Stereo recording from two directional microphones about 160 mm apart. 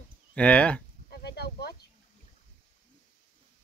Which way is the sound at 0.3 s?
10° left (ahead or behind).